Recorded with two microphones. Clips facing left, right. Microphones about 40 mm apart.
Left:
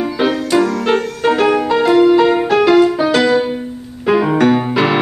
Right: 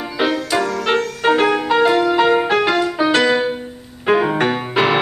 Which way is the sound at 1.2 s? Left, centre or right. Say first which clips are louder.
Left 2 dB; centre.